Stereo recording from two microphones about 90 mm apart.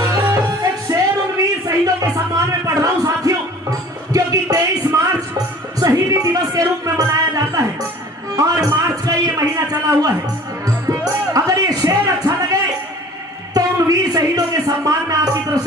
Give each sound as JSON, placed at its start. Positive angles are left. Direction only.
{"t": 0.0, "sound": "music", "side_deg": -35}
{"t": 4.1, "sound": "music", "side_deg": -40}
{"t": 6.0, "sound": "music", "side_deg": -45}
{"t": 8.4, "sound": "a sound", "side_deg": -45}
{"t": 10.9, "sound": "music", "side_deg": -40}